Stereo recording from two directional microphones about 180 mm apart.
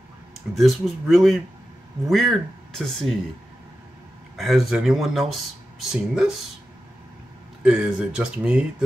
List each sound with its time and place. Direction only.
0.6 s speech: centre (ahead or behind)
4.4 s speech: centre (ahead or behind)
7.6 s speech: 5° right (ahead or behind)